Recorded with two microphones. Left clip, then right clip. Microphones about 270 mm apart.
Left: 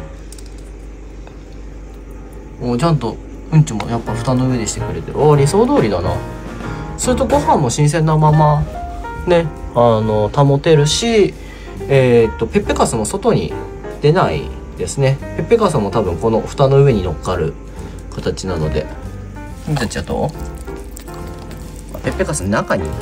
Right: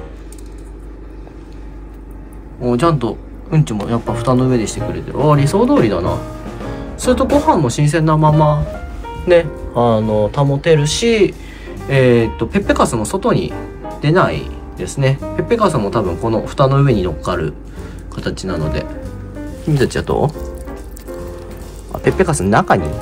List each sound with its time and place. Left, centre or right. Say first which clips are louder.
2.6 s speech: right 3 dB; centre
7.0 s speech: right 1 dB; centre
19.8 s speech: right 4 dB; centre
22.0 s speech: right 5 dB; centre